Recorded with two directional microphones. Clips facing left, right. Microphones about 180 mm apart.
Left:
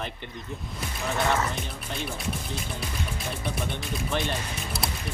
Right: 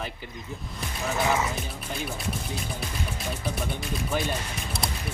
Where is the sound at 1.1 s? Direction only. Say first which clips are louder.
Even; 5° right (ahead or behind).